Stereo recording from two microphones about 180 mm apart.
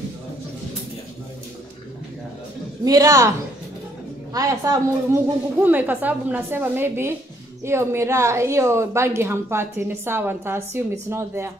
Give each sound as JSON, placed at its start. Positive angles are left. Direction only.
{"t": 2.8, "sound": "a woman's voice", "side_deg": -20}
{"t": 4.3, "sound": "a woman's voice", "side_deg": -20}